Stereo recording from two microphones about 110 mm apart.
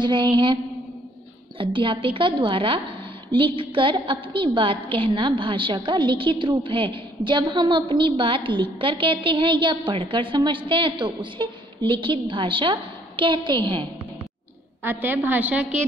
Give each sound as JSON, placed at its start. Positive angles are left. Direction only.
{"t": 0.0, "sound": "a woman's voice", "side_deg": -45}
{"t": 1.6, "sound": "a woman's voice", "side_deg": -50}
{"t": 14.8, "sound": "a woman's voice", "side_deg": -20}